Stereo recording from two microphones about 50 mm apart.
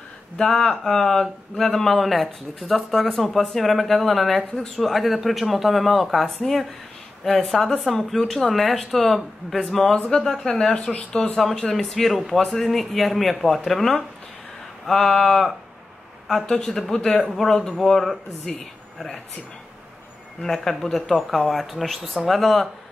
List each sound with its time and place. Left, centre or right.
0.4 s speech: centre
10.9 s speech: left
11.3 s speech: centre
20.4 s speech: centre